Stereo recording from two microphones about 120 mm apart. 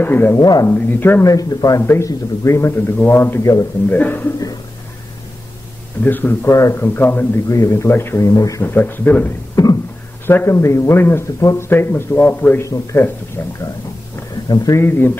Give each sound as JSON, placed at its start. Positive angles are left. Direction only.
{"t": 0.0, "sound": "speech", "side_deg": 15}
{"t": 0.4, "sound": "speech", "side_deg": 35}
{"t": 0.7, "sound": "speech", "side_deg": 15}
{"t": 1.2, "sound": "speech", "side_deg": 30}
{"t": 6.0, "sound": "speech", "side_deg": 15}
{"t": 14.5, "sound": "speech", "side_deg": 30}